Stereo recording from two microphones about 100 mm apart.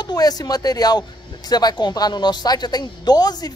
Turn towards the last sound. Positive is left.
turn(degrees=40)  # may be behind; listen again after turning